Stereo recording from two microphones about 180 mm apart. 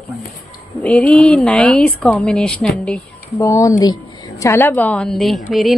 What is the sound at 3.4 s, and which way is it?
Speech, 15° left (ahead or behind).